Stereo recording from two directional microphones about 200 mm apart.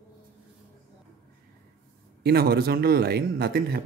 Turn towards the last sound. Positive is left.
turn(degrees=-50)  # may be behind; listen again after turning